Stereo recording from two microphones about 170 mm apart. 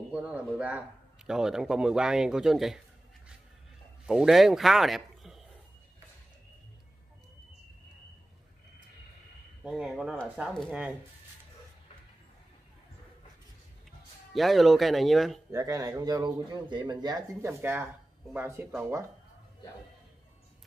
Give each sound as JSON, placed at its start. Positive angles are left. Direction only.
{"t": 0.1, "sound": "speech", "side_deg": -5}
{"t": 4.0, "sound": "a man's voice", "side_deg": -5}
{"t": 9.6, "sound": "speech", "side_deg": 0}
{"t": 14.3, "sound": "speech", "side_deg": 0}
{"t": 15.5, "sound": "speech", "side_deg": -20}
{"t": 17.5, "sound": "speech", "side_deg": -15}